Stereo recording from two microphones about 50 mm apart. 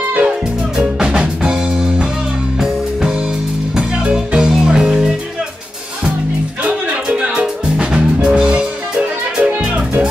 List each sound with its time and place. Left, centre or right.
0.2 s music: centre
6.9 s music: right